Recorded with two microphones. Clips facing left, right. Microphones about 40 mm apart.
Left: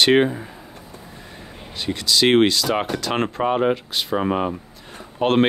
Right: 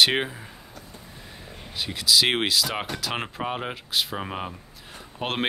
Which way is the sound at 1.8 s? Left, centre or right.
Centre.